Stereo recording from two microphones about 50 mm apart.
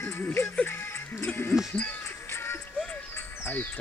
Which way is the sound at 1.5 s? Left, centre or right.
Left.